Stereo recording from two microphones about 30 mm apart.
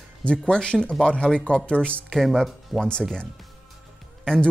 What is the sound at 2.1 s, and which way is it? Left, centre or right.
Speech, centre.